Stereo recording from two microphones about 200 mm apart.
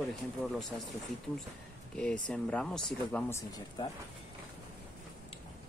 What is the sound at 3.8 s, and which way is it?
Speech, 25° left (ahead or behind).